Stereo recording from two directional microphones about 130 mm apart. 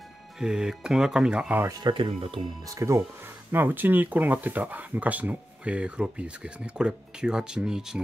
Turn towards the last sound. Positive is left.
turn(degrees=-5)  # may be behind; listen again after turning